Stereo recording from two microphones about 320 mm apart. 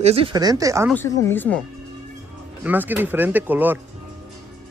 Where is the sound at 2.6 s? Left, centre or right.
Centre.